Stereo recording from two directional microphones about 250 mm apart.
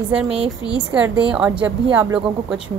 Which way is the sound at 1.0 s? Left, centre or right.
Centre.